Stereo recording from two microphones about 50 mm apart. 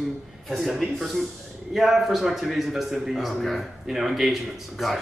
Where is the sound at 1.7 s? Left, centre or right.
Centre.